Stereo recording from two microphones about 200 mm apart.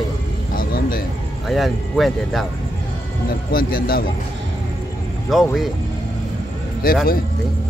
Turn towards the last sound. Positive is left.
turn(degrees=45)  # may be behind; listen again after turning